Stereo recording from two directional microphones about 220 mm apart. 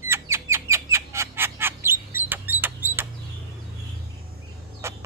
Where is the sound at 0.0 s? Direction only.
10° right (ahead or behind).